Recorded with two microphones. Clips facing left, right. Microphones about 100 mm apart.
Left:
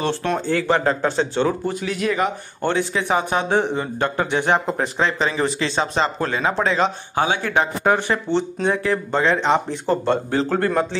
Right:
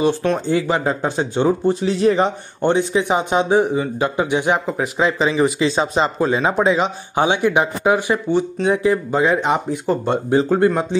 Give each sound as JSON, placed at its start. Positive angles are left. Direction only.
{"t": 0.0, "sound": "a man's voice", "side_deg": -10}